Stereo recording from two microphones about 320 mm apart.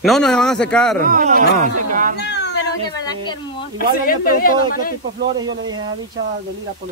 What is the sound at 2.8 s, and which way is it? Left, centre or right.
Speech, centre.